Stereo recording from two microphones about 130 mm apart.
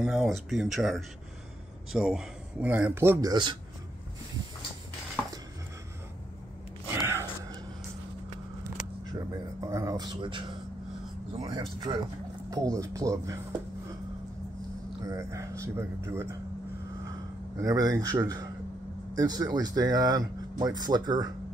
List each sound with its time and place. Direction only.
0.0 s speech: centre (ahead or behind); by 3.3 s 20° right (ahead or behind)
3.3 s speech: 40° right (ahead or behind)
7.1 s a sound: 20° right (ahead or behind)
9.0 s a sound: 25° right (ahead or behind)
11.4 s speech: 35° right (ahead or behind)
12.7 s speech: 25° right (ahead or behind)
15.0 s speech: 25° right (ahead or behind)
17.6 s speech: 30° right (ahead or behind)